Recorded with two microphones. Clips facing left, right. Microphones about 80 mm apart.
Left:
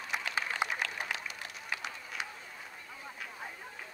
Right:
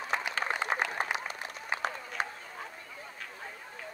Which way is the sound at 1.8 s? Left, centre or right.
Right.